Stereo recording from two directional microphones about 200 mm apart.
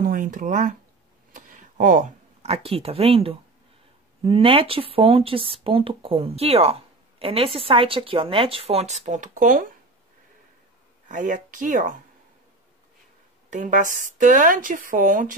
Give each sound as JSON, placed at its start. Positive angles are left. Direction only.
{"t": 0.0, "sound": "a sound", "side_deg": -45}
{"t": 4.2, "sound": "speech", "side_deg": -30}
{"t": 11.1, "sound": "a woman's voice", "side_deg": -40}
{"t": 13.5, "sound": "a woman's voice", "side_deg": -40}